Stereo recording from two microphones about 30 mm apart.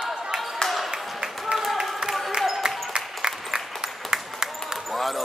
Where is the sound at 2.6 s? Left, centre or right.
Right.